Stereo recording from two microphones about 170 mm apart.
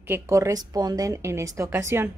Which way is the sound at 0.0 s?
15° right (ahead or behind).